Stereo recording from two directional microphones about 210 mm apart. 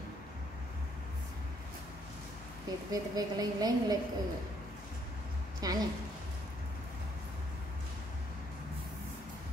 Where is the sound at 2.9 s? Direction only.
15° right (ahead or behind).